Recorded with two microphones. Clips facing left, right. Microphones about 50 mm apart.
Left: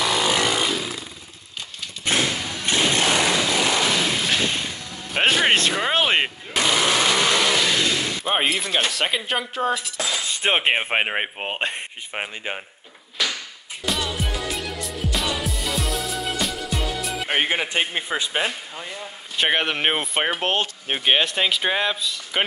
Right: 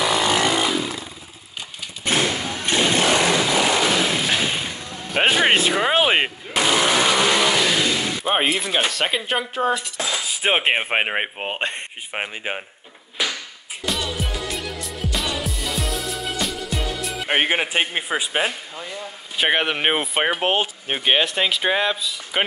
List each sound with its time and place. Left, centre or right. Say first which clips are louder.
0.0 s a sound: right 2 dB; centre
2.0 s a sound: right 2 dB; centre
2.6 s chainsaw: right 2 dB; centre
9.9 s speech: right 1 dB; centre
12.1 s a man's voice: right 2 dB; centre
13.2 s a sound: right 1 dB; centre
13.8 s music: even; centre
17.3 s a man's voice: right 3 dB; centre
18.8 s speech: right 1 dB; centre